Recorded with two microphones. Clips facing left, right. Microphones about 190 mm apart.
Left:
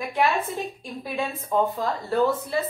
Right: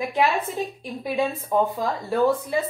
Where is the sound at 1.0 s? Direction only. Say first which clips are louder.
Right 5 dB; 15° right (ahead or behind).